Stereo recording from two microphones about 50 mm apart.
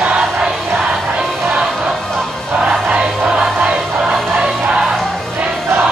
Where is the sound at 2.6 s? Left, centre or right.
Right.